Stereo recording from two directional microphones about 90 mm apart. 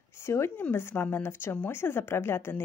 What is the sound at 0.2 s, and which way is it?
Speech, 30° left (ahead or behind).